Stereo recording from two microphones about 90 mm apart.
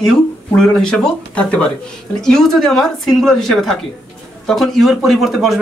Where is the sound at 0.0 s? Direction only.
Centre (ahead or behind).